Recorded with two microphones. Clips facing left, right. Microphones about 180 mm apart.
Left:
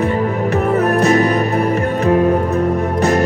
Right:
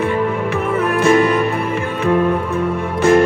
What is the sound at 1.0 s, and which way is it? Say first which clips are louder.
Music: right 3 dB; 40° left (ahead or behind).